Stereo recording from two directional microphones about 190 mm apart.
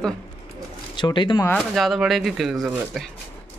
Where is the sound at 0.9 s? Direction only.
25° left (ahead or behind).